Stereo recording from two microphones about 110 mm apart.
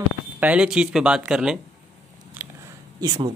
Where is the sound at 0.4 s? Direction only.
10° right (ahead or behind).